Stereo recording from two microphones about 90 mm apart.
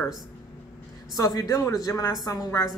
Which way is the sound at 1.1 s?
40° left (ahead or behind).